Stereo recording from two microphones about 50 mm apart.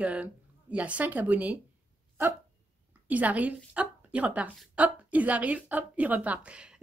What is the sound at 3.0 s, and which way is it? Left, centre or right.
A woman's voice, right.